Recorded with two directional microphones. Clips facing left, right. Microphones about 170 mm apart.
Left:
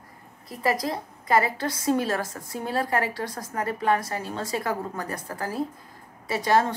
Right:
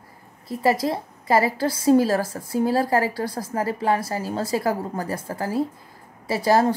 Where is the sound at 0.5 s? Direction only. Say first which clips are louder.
Right 5 dB; 30° right (ahead or behind).